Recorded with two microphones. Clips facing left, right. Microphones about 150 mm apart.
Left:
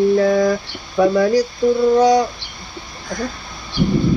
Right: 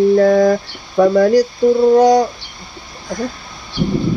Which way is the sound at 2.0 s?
45° right (ahead or behind).